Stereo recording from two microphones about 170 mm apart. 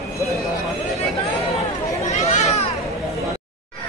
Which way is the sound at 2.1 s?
40° left (ahead or behind).